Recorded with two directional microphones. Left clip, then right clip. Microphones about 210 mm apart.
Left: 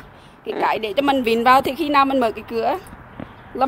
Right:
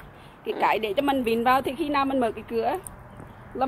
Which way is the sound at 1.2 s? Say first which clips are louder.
Left 9 dB; 25° left (ahead or behind).